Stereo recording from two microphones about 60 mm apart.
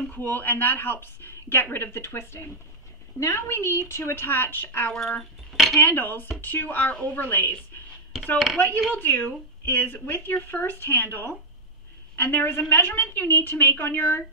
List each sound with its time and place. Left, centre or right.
0.1 s a woman's voice: left
3.2 s a woman's voice: left
5.5 s dishes: centre
5.9 s a woman's voice: left
7.2 s a woman's voice: left
8.5 s a woman's voice: left